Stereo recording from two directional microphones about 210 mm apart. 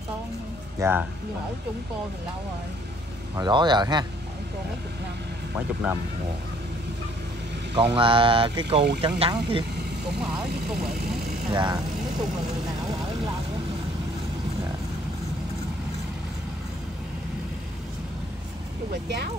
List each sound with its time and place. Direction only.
0.7 s speech: 10° right (ahead or behind)
3.3 s speech: 20° right (ahead or behind)
7.7 s speech: 25° right (ahead or behind)
10.1 s speech: 5° right (ahead or behind)
11.5 s speech: 20° right (ahead or behind)